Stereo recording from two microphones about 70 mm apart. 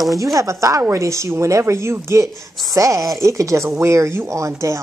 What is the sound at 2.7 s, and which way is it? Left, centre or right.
A woman's voice, right.